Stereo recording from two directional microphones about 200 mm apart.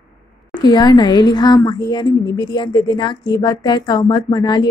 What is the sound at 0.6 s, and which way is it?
Speech, 20° left (ahead or behind).